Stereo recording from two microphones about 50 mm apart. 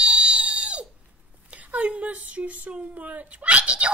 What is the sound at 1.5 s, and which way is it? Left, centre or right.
Speech, right.